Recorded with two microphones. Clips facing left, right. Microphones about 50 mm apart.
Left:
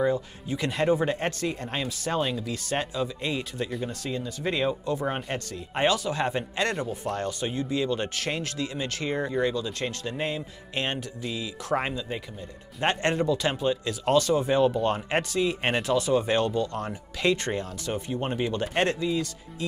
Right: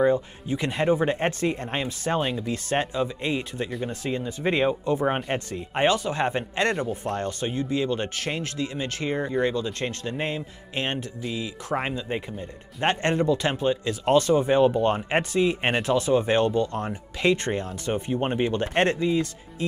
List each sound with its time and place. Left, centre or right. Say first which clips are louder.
0.0 s speech: right 4 dB; right